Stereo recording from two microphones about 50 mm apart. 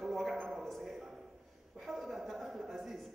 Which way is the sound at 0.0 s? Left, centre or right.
Centre.